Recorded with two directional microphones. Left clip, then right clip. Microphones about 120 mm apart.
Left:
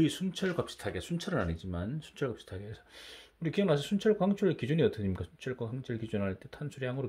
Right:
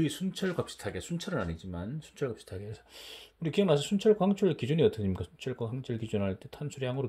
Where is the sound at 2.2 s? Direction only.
Centre (ahead or behind).